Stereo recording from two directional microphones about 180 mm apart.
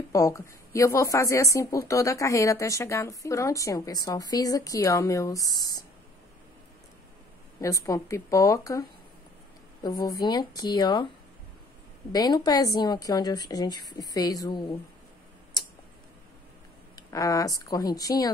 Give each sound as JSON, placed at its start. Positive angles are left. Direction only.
{"t": 0.1, "sound": "speech", "side_deg": 15}
{"t": 7.6, "sound": "speech", "side_deg": 20}
{"t": 9.8, "sound": "a woman's voice", "side_deg": 20}
{"t": 12.1, "sound": "a woman's voice", "side_deg": 20}
{"t": 16.9, "sound": "a woman's voice", "side_deg": 20}